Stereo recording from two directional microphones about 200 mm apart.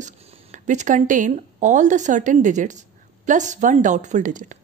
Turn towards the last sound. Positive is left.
turn(degrees=-40)  # may be behind; listen again after turning